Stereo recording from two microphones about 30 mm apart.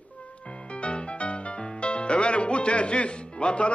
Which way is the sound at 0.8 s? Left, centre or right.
Left.